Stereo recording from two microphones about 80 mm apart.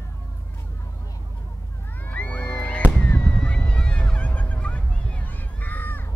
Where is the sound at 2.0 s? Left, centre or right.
Centre.